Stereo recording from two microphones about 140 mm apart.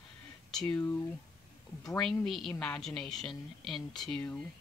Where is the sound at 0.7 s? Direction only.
20° left (ahead or behind).